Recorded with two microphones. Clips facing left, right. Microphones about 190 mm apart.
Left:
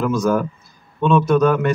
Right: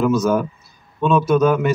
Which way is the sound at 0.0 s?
Centre (ahead or behind).